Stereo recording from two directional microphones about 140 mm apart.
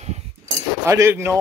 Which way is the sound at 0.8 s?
20° right (ahead or behind).